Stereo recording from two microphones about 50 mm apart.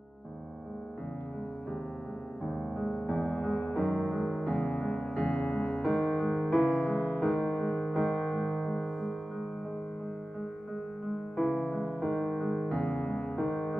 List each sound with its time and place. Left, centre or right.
3.1 s music: left
3.7 s music: centre
4.1 s music: centre
4.5 s music: centre
7.4 s music: centre
11.5 s music: centre
12.6 s music: centre
13.4 s music: centre